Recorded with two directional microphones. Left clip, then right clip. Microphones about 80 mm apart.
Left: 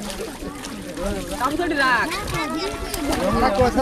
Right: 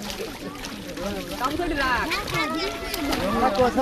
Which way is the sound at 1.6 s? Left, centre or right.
Left.